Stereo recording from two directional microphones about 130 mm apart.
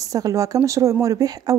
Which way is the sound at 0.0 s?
25° right (ahead or behind).